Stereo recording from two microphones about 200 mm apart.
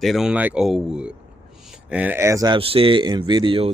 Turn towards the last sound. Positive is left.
turn(degrees=-25)  # may be behind; listen again after turning